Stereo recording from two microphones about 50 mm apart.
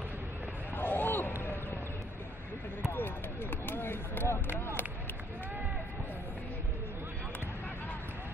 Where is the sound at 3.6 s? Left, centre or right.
Left.